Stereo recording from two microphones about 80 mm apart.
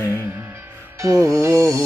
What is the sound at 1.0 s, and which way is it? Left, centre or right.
Music, right.